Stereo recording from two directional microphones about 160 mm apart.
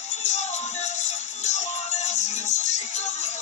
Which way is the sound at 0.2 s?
45° left (ahead or behind).